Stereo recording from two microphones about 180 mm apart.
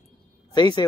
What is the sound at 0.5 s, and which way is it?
Speech, 25° left (ahead or behind).